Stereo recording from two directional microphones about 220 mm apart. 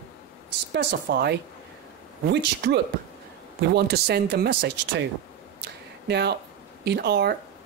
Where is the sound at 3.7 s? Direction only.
50° right (ahead or behind).